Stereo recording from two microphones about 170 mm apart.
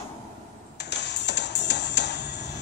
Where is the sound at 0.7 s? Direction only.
90° left.